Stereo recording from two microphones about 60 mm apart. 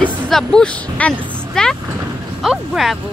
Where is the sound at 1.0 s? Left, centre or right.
Left.